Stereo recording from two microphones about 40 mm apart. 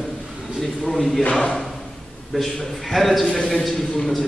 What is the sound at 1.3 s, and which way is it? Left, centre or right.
Speech, centre.